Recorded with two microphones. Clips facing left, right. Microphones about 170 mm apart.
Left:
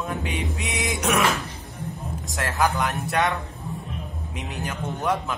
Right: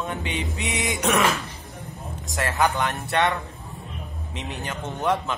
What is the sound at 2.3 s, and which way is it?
Speech, centre (ahead or behind).